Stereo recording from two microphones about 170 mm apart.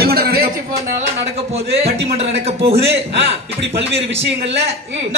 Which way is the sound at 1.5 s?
35° right (ahead or behind).